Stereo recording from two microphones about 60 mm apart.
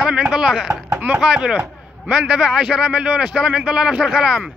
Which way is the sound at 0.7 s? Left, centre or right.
Right.